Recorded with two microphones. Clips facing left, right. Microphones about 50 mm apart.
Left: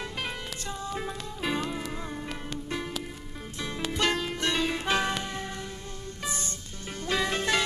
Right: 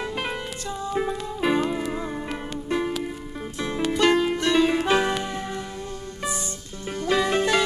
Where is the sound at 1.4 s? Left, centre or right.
Right.